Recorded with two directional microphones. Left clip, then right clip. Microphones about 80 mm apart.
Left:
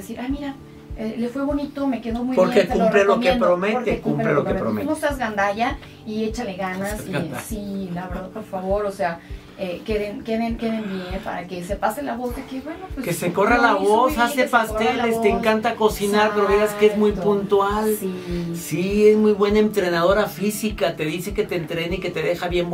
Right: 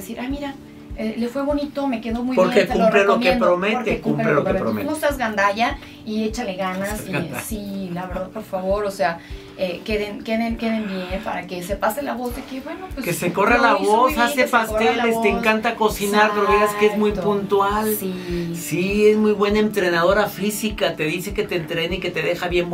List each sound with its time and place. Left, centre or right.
2.3 s speech: centre
5.3 s a woman's voice: right
6.8 s speech: centre
9.0 s a woman's voice: right
13.0 s speech: centre